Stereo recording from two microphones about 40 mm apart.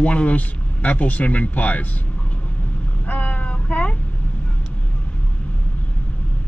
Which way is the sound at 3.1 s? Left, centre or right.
Left.